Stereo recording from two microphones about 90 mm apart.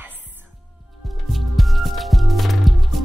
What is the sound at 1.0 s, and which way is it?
Music, centre (ahead or behind).